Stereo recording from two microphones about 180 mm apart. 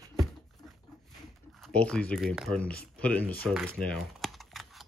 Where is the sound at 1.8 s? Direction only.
5° left (ahead or behind).